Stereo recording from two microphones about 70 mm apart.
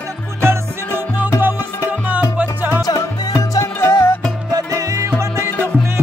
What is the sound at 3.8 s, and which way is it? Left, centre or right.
Music, left.